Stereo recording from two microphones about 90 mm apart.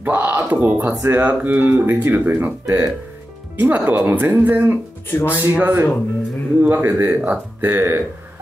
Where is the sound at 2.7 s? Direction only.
35° right (ahead or behind).